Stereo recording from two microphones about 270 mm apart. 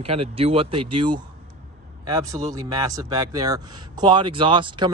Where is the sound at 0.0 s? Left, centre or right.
Right.